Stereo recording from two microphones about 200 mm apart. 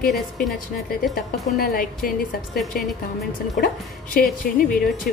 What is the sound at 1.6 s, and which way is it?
Speech, 45° left (ahead or behind).